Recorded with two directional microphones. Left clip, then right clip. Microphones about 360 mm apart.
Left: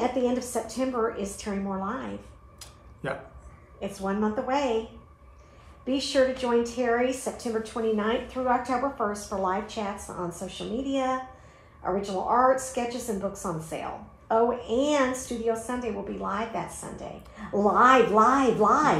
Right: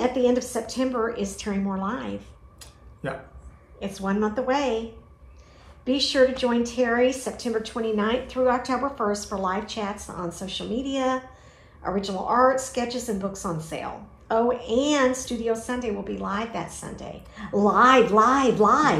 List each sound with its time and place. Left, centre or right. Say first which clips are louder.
0.0 s a woman's voice: right 4 dB; right
2.6 s a sound: right 2 dB; centre
3.8 s a woman's voice: right 2 dB; right
5.9 s a woman's voice: right 4 dB; right